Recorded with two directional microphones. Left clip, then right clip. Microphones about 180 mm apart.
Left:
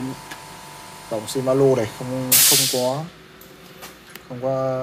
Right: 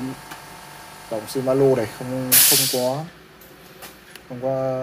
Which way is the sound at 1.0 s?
10° left (ahead or behind).